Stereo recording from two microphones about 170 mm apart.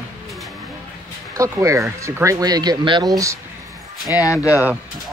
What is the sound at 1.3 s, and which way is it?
Speech, 20° right (ahead or behind).